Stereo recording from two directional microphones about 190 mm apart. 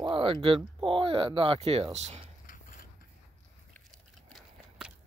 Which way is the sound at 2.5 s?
45° left (ahead or behind).